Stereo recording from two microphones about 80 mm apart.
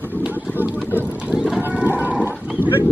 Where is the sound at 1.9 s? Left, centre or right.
Right.